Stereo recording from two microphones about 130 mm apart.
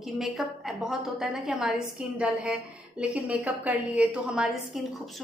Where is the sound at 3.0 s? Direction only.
10° right (ahead or behind).